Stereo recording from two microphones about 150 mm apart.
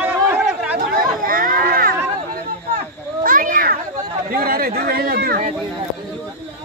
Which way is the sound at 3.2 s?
65° right (ahead or behind).